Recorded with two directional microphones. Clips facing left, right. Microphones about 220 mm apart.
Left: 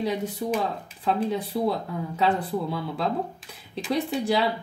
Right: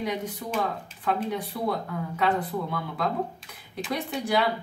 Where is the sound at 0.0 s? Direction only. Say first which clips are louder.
Left 4 dB; 30° left (ahead or behind).